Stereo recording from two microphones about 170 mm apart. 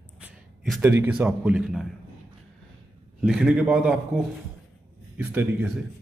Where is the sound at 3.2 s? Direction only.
5° right (ahead or behind).